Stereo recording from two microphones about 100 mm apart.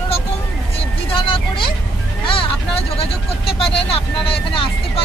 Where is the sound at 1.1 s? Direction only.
55° left (ahead or behind).